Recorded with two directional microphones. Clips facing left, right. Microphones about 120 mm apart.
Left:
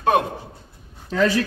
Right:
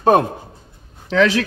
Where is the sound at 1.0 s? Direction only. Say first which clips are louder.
Right 4 dB; 85° right.